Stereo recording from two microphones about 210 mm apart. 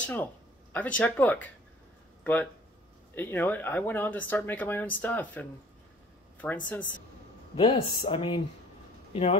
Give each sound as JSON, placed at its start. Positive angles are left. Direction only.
{"t": 0.0, "sound": "speech", "side_deg": 5}
{"t": 3.2, "sound": "speech", "side_deg": 10}
{"t": 7.5, "sound": "speech", "side_deg": 25}